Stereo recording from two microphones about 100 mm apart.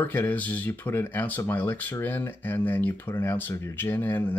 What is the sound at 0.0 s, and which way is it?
Speech, 20° left (ahead or behind).